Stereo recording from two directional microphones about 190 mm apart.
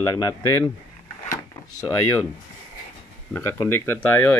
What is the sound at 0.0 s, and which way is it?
Speech, 15° left (ahead or behind).